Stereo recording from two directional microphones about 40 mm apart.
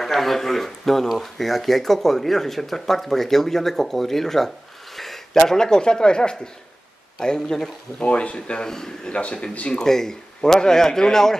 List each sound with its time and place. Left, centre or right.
0.0 s a man's voice: centre
8.0 s speech: left
8.6 s speech: centre
9.1 s speech: left
9.7 s speech: centre